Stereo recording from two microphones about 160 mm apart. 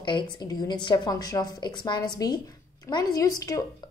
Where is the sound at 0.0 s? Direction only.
30° left (ahead or behind).